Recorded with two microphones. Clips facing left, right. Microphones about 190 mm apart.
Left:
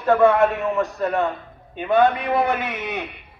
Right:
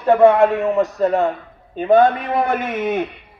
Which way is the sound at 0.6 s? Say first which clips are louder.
Right 5 dB; 35° right (ahead or behind).